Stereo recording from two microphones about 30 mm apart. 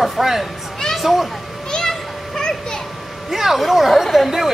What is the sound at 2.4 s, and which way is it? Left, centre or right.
Children playing, centre.